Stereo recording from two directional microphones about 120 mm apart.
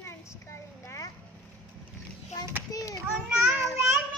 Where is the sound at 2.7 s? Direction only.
30° left (ahead or behind).